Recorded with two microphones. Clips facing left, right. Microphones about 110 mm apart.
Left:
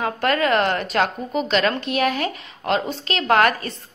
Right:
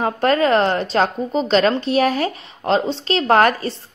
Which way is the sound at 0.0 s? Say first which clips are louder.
Right 4 dB; 30° right (ahead or behind).